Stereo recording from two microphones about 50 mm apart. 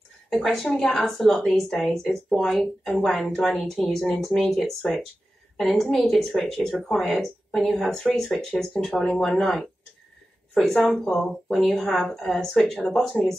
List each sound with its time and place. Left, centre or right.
0.3 s a woman's voice: centre
9.2 s speech: centre
12.7 s a woman's voice: centre